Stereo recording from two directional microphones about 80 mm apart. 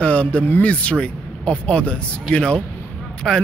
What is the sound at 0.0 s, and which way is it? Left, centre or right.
Speech, centre.